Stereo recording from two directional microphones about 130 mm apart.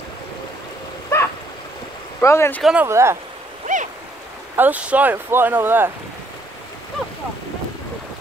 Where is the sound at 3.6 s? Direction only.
70° right (ahead or behind).